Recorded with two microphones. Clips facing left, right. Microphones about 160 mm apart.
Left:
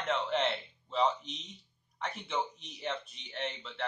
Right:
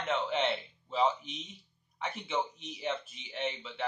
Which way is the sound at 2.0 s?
Centre (ahead or behind).